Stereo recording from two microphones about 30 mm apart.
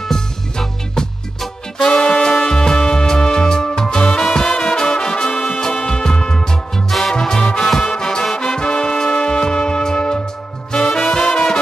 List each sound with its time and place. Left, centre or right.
0.1 s music: centre
1.9 s music: left
6.7 s music: centre